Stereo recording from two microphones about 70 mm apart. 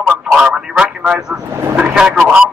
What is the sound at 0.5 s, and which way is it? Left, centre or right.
Speech, centre.